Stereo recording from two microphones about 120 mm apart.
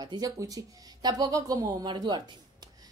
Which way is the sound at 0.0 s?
35° right (ahead or behind).